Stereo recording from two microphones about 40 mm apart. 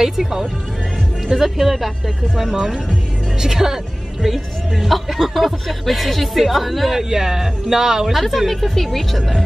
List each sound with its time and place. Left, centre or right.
0.0 s speech: centre
3.3 s a woman's voice: centre
4.3 s speech: centre
8.1 s speech: centre